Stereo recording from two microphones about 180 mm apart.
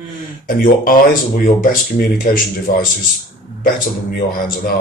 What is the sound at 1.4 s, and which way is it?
Speech, 50° left (ahead or behind).